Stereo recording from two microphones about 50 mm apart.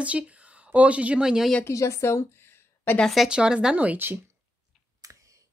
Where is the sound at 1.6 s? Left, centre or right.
Left.